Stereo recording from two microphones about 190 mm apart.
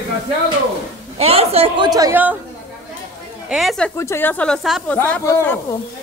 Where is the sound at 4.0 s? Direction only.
10° left (ahead or behind).